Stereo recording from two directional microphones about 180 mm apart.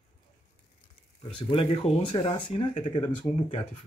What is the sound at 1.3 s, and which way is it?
Speech, 30° left (ahead or behind).